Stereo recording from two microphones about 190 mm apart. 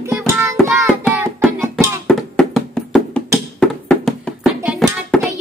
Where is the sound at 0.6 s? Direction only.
5° left (ahead or behind).